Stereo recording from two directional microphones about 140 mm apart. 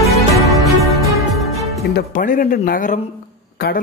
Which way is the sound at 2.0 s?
70° left (ahead or behind).